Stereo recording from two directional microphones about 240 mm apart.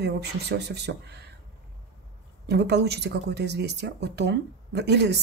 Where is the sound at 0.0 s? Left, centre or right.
Right.